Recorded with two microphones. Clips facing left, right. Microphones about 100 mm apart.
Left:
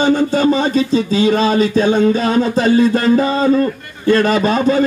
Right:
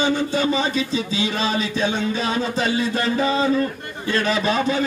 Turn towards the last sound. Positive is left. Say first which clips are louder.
# left 7 dB
turn(degrees=40)  # may be behind; listen again after turning